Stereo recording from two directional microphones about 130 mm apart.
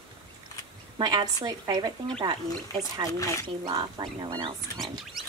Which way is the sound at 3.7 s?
35° right (ahead or behind).